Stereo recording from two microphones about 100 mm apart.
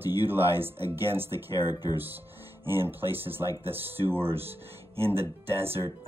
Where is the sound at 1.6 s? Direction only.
40° left (ahead or behind).